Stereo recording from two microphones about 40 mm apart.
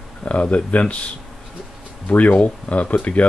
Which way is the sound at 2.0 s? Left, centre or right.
Left.